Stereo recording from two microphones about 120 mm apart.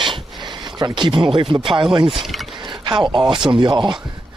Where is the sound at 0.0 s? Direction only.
40° right (ahead or behind).